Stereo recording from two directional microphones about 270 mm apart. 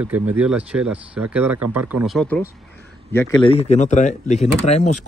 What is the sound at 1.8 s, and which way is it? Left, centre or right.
Speech, centre.